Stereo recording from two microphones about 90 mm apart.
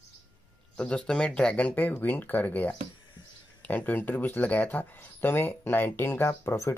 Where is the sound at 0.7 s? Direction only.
10° left (ahead or behind).